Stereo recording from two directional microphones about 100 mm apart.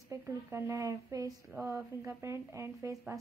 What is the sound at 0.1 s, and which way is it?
A woman's voice, 30° right (ahead or behind).